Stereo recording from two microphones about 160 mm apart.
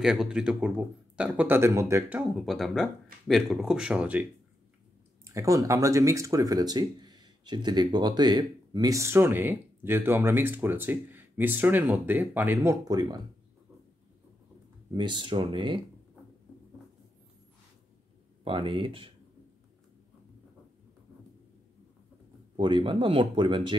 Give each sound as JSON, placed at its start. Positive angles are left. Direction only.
{"t": 0.0, "sound": "speech", "side_deg": -5}
{"t": 5.2, "sound": "speech", "side_deg": -20}
{"t": 14.9, "sound": "speech", "side_deg": -30}
{"t": 18.4, "sound": "speech", "side_deg": -30}
{"t": 22.6, "sound": "speech", "side_deg": -30}